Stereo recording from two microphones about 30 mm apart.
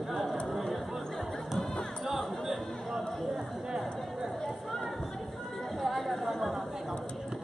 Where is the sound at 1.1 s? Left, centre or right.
Centre.